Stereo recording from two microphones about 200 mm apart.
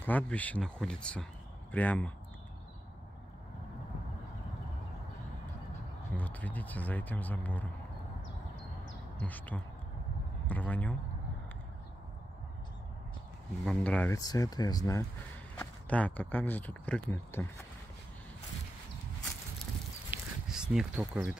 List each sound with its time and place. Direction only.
0.0 s speech: 10° left (ahead or behind)
6.1 s speech: 10° left (ahead or behind)
9.2 s speech: 10° left (ahead or behind)
13.7 s speech: 5° left (ahead or behind)
14.1 s speech: 15° left (ahead or behind)
20.1 s a sound: 5° right (ahead or behind)